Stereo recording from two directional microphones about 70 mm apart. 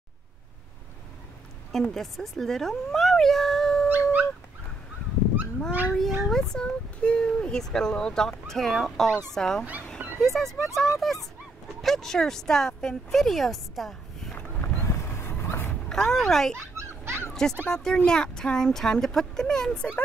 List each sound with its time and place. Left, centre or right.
1.7 s speech: centre
3.9 s dog: right
5.9 s speech: centre
14.6 s a sound: left
15.4 s dog: left
15.9 s speech: centre
16.5 s a sound: right
17.3 s bow-wow: centre
17.6 s speech: centre